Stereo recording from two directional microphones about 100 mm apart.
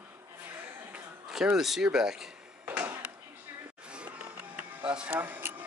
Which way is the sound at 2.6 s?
20° right (ahead or behind).